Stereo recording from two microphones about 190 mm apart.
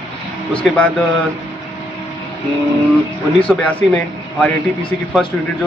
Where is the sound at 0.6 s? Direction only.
5° left (ahead or behind).